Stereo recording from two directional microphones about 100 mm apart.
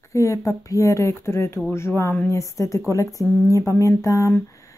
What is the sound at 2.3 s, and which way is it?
Speech, 30° left (ahead or behind).